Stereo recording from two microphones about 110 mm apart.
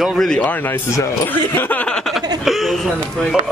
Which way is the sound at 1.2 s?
20° left (ahead or behind).